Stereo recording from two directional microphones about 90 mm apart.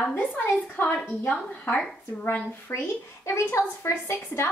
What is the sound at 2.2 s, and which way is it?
A woman's voice, 20° left (ahead or behind).